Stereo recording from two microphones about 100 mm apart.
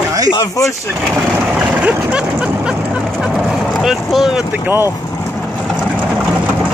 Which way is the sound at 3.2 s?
10° right (ahead or behind).